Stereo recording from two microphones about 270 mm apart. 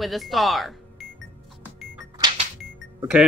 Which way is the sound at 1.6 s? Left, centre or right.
Centre.